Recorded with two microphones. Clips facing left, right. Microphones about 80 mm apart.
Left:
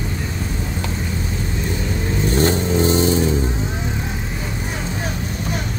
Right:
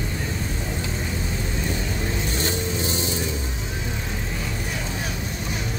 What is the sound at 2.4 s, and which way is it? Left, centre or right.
Vehicle, left.